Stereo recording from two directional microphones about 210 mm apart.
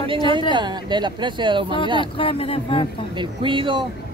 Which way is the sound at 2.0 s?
25° left (ahead or behind).